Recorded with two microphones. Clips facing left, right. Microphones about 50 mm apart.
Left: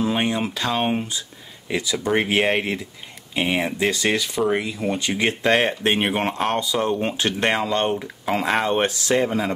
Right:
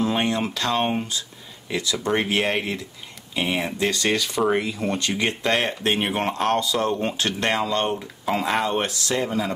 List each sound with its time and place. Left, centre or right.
0.0 s speech: centre
8.6 s speech: left